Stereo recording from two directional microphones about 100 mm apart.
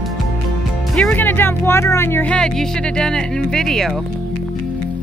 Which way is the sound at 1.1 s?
20° left (ahead or behind).